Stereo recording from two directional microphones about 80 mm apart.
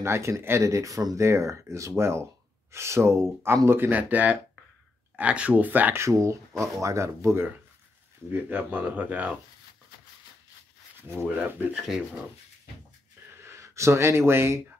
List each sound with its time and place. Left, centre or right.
0.0 s speech: right
5.9 s speech: right
8.3 s speech: right
11.0 s speech: right
11.3 s speech: right
13.4 s speech: right